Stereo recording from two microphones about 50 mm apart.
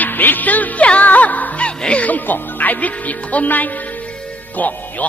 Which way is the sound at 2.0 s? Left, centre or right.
Left.